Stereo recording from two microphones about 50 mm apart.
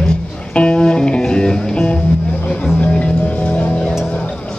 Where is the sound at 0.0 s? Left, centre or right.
Centre.